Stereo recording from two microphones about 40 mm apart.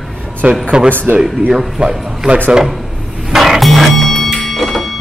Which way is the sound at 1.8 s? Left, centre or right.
Centre.